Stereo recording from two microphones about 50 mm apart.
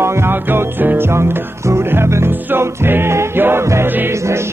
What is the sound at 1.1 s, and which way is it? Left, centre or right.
Music, right.